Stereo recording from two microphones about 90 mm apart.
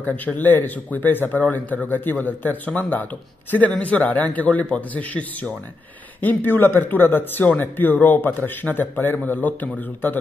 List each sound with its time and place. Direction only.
0.0 s a man's voice: 20° left (ahead or behind)